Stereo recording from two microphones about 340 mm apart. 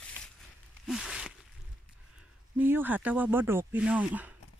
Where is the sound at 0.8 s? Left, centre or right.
Centre.